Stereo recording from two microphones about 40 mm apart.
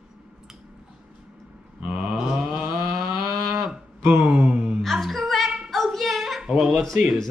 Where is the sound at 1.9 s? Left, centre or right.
Right.